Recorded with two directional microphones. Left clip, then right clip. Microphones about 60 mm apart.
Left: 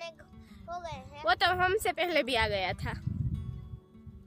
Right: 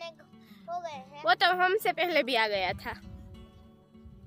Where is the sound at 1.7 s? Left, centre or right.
Right.